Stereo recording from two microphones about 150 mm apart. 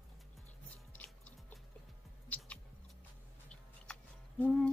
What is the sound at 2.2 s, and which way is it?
Mouse, 10° left (ahead or behind).